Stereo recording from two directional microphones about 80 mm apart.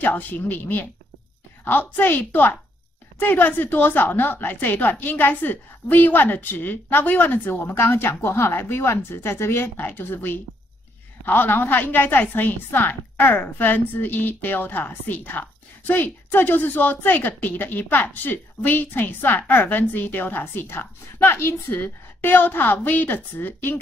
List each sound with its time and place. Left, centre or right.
0.0 s a woman's voice: left